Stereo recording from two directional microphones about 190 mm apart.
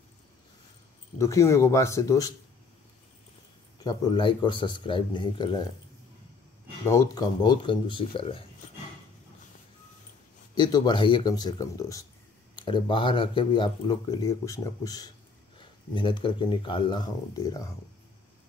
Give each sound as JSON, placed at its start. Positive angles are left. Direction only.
{"t": 1.1, "sound": "speech", "side_deg": 15}
{"t": 3.8, "sound": "speech", "side_deg": 20}
{"t": 6.9, "sound": "speech", "side_deg": 20}
{"t": 10.5, "sound": "speech", "side_deg": 20}